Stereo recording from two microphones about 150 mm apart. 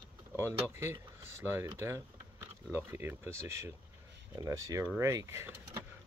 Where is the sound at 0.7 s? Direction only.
15° right (ahead or behind).